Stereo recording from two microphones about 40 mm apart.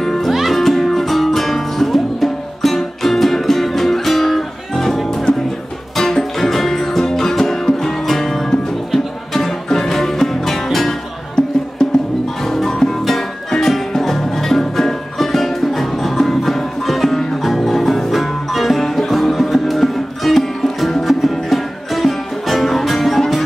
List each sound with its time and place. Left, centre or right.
0.0 s music: centre
0.6 s music: centre
11.8 s music: centre
12.4 s music: centre